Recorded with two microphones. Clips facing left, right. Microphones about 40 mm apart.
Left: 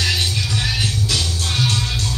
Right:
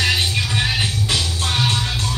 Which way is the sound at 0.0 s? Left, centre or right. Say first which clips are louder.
Right 2 dB; right.